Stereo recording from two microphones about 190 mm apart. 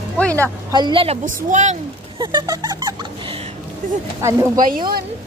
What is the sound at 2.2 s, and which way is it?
Speech, 25° right (ahead or behind).